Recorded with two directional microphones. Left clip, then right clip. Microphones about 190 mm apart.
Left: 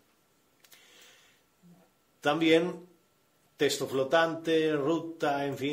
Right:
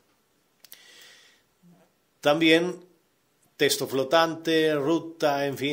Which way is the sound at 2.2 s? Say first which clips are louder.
Right 4 dB; 25° right (ahead or behind).